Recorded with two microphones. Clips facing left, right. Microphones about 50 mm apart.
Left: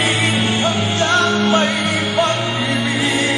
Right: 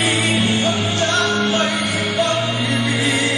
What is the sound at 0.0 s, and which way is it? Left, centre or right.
Music, left.